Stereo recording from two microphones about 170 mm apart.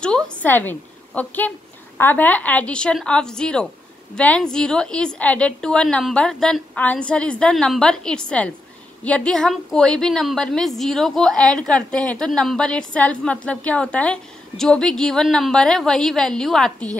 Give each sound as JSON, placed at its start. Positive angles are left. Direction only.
{"t": 0.0, "sound": "a woman's voice", "side_deg": 5}